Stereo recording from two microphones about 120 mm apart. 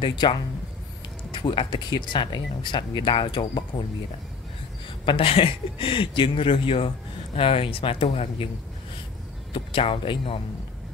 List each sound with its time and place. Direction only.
0.0 s speech: 40° left (ahead or behind)
5.0 s speech: 50° left (ahead or behind)
9.5 s speech: 45° left (ahead or behind)